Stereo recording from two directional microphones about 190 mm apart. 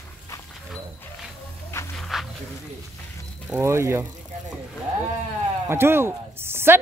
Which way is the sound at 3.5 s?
15° right (ahead or behind).